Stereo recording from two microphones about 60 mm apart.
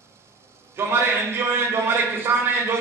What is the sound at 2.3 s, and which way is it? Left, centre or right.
Speech, right.